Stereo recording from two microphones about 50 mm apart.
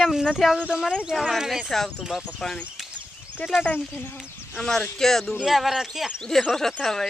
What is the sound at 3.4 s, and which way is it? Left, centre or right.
Speech, left.